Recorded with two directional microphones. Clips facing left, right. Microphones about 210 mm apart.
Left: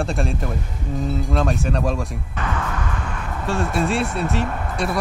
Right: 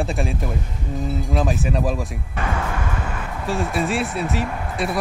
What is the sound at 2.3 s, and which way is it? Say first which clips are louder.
Music: right 2 dB; 25° right (ahead or behind).